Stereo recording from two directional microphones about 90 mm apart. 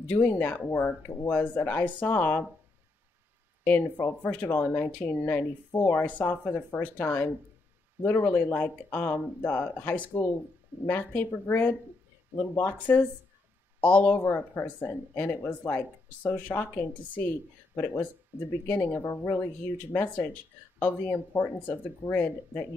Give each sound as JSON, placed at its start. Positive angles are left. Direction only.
{"t": 0.1, "sound": "speech", "side_deg": 15}
{"t": 1.3, "sound": "speech", "side_deg": 15}
{"t": 3.6, "sound": "speech", "side_deg": 20}
{"t": 14.1, "sound": "speech", "side_deg": 25}
{"t": 21.4, "sound": "speech", "side_deg": 25}